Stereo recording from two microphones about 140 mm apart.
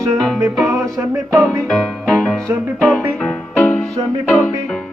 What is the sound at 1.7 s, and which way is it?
Music, 5° left (ahead or behind).